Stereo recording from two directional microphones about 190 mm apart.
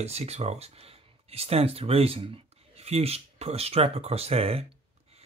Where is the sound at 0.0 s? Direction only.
35° right (ahead or behind).